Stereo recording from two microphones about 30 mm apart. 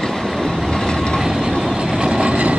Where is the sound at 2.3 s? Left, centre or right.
Right.